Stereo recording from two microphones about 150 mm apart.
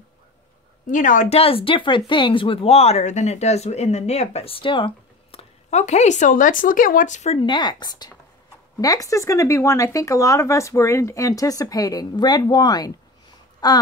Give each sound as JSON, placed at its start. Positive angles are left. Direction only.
{"t": 0.8, "sound": "speech", "side_deg": 60}
{"t": 1.4, "sound": "speech", "side_deg": 35}
{"t": 7.3, "sound": "speech", "side_deg": 30}